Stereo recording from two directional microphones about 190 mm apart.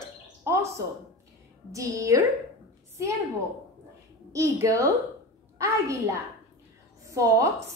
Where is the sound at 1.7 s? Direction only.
15° right (ahead or behind).